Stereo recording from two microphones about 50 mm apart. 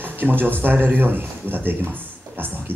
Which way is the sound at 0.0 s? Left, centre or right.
Right.